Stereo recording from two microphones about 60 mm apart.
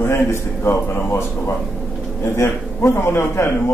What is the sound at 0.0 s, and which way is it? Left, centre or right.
A man's voice, left.